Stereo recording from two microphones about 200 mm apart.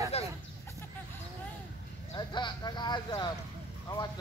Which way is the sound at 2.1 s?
20° left (ahead or behind).